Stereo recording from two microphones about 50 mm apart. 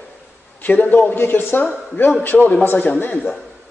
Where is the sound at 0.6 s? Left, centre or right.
Left.